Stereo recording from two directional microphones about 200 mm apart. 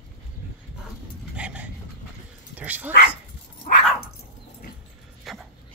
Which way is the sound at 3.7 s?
40° left (ahead or behind).